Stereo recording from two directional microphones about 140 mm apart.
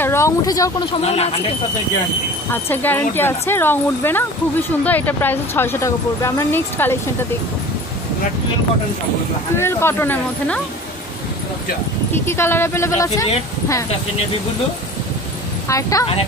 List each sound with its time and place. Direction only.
0.0 s speech: 20° left (ahead or behind)
1.0 s speech: 50° left (ahead or behind)
2.5 s speech: 15° left (ahead or behind)
9.6 s speech: 20° left (ahead or behind)
12.1 s speech: 15° left (ahead or behind)
15.7 s speech: 25° left (ahead or behind)